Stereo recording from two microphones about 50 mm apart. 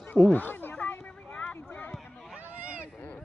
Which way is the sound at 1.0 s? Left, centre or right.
Left.